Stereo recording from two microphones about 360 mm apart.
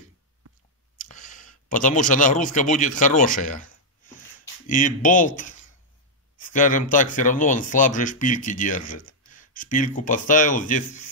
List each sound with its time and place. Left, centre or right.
0.9 s speech: left
4.6 s speech: left